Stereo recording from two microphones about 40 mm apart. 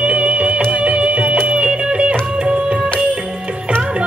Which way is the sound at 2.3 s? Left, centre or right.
Right.